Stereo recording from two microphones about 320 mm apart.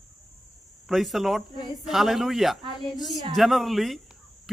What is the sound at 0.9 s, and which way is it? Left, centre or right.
Speech, centre.